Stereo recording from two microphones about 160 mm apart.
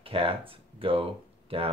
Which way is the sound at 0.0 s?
35° right (ahead or behind).